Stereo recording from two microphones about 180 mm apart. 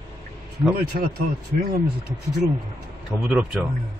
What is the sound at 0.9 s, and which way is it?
Speech, 60° right (ahead or behind).